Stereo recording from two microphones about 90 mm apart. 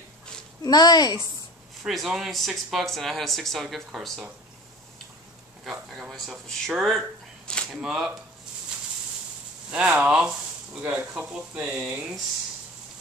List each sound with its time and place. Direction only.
0.7 s speech: 50° left (ahead or behind)
1.8 s speech: centre (ahead or behind)
5.7 s speech: 5° right (ahead or behind)
7.5 s a sound: 10° left (ahead or behind)
7.8 s speech: 5° right (ahead or behind)
9.7 s speech: 10° right (ahead or behind)